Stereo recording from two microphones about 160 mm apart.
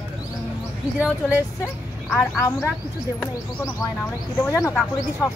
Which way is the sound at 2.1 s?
15° left (ahead or behind).